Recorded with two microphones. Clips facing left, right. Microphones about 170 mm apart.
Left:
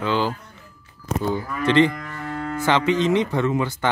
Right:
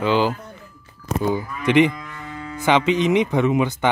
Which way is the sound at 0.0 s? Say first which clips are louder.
Right 4 dB; 15° right (ahead or behind).